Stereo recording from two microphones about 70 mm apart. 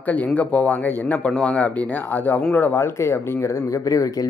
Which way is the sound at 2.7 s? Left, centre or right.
Left.